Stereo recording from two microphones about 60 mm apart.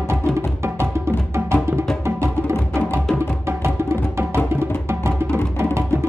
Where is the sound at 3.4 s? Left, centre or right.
Right.